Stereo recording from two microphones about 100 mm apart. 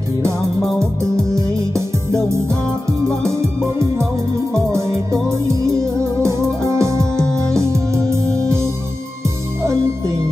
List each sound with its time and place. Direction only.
1.1 s music: 30° right (ahead or behind)
5.1 s music: 30° right (ahead or behind)
7.2 s music: 5° left (ahead or behind)
7.5 s music: 30° right (ahead or behind)